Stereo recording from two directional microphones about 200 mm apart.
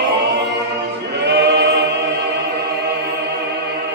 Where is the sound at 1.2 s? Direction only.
60° right (ahead or behind).